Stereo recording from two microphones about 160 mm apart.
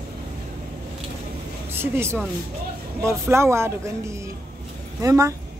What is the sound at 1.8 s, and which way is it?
Speech, 15° right (ahead or behind).